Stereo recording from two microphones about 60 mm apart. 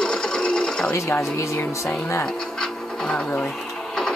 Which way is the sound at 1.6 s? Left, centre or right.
Left.